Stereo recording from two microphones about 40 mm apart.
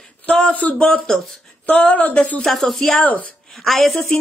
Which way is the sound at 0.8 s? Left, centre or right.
Left.